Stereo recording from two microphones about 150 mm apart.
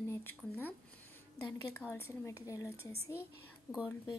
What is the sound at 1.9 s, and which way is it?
A woman's voice, 15° left (ahead or behind).